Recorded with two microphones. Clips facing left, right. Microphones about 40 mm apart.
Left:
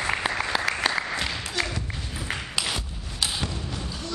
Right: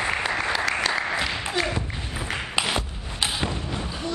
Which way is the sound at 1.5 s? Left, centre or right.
Right.